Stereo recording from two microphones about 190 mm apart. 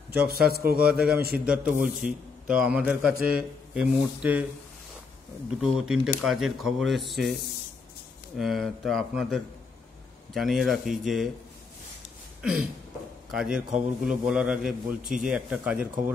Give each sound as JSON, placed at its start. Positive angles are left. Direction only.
{"t": 0.3, "sound": "a man's voice", "side_deg": -55}
{"t": 1.4, "sound": "a man's voice", "side_deg": -5}
{"t": 5.6, "sound": "a man's voice", "side_deg": -5}
{"t": 8.4, "sound": "a man's voice", "side_deg": 0}
{"t": 12.4, "sound": "a sound", "side_deg": -5}
{"t": 13.3, "sound": "a man's voice", "side_deg": 0}